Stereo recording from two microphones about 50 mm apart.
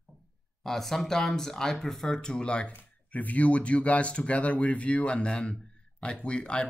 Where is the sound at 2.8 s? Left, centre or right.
Left.